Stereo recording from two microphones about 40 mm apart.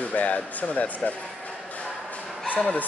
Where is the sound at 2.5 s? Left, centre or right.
Left.